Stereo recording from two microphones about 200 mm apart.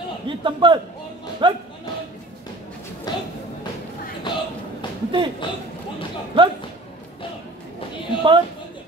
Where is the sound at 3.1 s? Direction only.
20° left (ahead or behind).